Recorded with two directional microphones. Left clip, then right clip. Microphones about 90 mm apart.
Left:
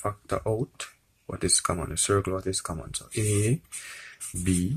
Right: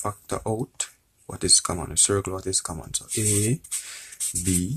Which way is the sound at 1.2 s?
25° right (ahead or behind).